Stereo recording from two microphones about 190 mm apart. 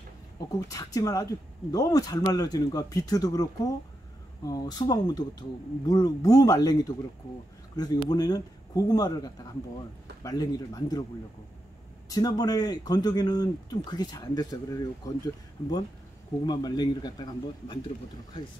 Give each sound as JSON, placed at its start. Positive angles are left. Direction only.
{"t": 0.5, "sound": "speech", "side_deg": 20}
{"t": 12.1, "sound": "speech", "side_deg": 20}